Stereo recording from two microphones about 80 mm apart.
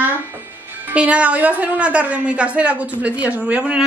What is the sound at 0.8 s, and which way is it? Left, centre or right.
A woman's voice, centre.